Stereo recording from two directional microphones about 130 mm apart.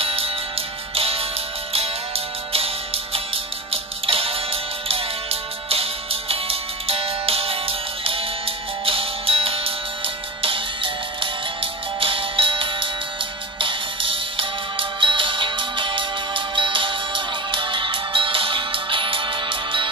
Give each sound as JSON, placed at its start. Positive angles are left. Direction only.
{"t": 0.0, "sound": "music", "side_deg": -45}